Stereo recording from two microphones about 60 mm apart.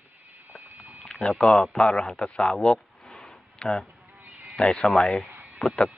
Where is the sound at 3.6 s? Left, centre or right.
Centre.